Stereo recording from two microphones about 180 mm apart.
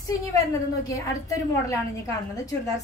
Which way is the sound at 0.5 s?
20° left (ahead or behind).